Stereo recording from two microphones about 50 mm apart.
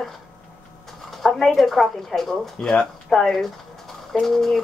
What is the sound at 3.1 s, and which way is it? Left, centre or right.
Speech, centre.